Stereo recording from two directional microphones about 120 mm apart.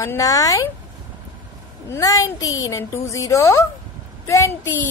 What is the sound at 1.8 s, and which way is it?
Speech, 30° left (ahead or behind).